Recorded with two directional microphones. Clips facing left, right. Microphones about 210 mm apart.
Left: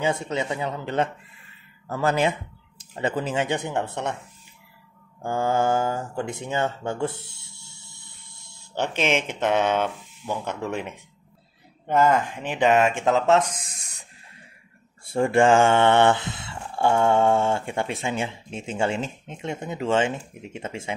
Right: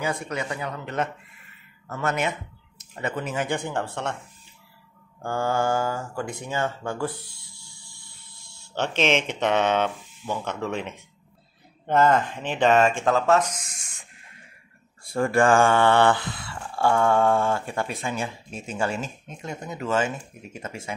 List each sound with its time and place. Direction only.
0.0 s mantra: 25° left (ahead or behind)
1.9 s speech: 30° left (ahead or behind)
2.8 s mantra: 30° left (ahead or behind)
5.2 s mantra: 20° left (ahead or behind)
7.8 s a sound: 20° left (ahead or behind)
8.7 s speech: 10° left (ahead or behind); by 13.8 s 30° left (ahead or behind)
15.1 s mantra: 25° left (ahead or behind)